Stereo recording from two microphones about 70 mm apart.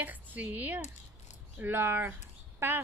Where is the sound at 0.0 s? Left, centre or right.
Right.